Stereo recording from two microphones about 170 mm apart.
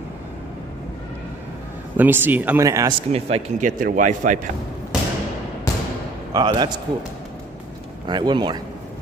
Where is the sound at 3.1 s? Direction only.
40° right (ahead or behind).